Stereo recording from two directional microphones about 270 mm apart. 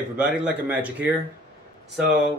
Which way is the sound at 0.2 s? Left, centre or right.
Centre.